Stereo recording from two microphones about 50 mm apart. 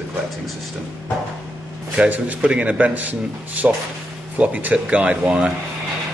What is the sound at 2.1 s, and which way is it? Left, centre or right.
A man's voice, right.